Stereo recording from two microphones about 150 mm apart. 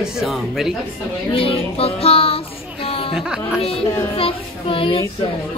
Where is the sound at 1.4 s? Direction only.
40° left (ahead or behind).